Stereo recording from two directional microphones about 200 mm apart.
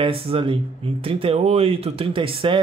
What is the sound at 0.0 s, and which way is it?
Speech, 25° right (ahead or behind).